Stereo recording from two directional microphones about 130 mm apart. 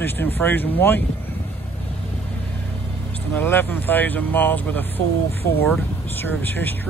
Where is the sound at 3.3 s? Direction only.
15° left (ahead or behind).